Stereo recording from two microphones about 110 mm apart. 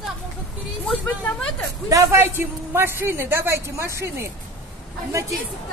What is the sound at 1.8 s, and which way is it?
A man's voice, 30° right (ahead or behind).